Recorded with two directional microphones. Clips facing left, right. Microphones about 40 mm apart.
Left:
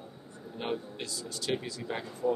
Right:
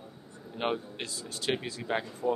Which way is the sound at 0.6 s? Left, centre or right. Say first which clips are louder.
Right 3 dB; right.